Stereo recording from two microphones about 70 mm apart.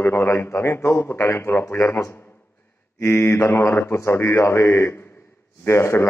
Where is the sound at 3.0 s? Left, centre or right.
Left.